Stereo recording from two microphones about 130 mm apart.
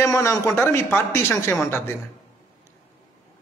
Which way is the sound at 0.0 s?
20° left (ahead or behind).